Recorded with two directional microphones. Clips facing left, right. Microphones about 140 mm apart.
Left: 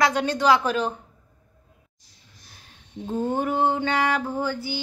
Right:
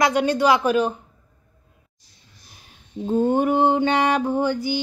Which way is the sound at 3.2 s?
20° right (ahead or behind).